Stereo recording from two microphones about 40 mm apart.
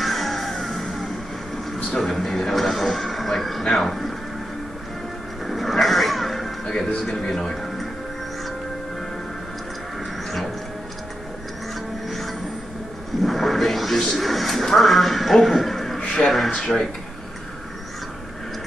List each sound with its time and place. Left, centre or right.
0.0 s music: centre
1.8 s a sound: centre
2.0 s speech: centre
5.5 s music: centre
7.0 s speech: centre
12.1 s music: centre
13.2 s speech: centre